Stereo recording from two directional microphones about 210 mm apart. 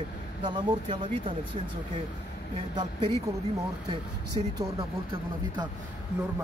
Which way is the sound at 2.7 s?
20° right (ahead or behind).